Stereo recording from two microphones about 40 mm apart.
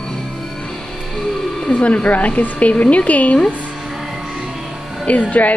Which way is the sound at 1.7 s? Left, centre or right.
Left.